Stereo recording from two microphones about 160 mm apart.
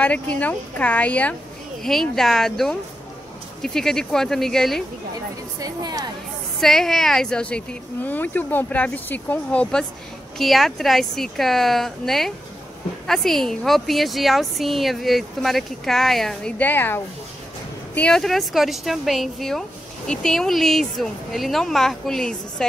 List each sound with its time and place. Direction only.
0.0 s a woman's voice: 10° left (ahead or behind)
5.6 s a woman's voice: 25° right (ahead or behind)
6.6 s a woman's voice: centre (ahead or behind)